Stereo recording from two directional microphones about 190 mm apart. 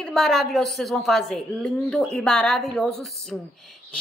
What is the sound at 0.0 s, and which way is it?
A man's voice, centre (ahead or behind).